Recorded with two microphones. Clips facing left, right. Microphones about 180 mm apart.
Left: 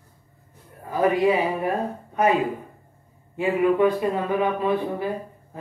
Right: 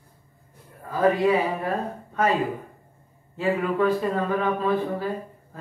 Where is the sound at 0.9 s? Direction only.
20° left (ahead or behind).